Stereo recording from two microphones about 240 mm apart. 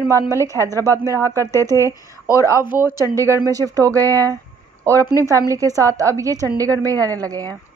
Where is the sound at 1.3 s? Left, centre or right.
Centre.